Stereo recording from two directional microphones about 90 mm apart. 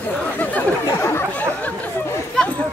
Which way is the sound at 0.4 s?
20° left (ahead or behind).